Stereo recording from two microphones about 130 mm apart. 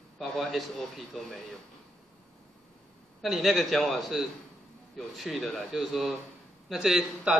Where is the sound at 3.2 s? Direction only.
Centre (ahead or behind).